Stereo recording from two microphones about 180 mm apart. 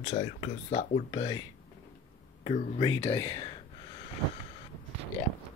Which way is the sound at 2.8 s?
30° left (ahead or behind).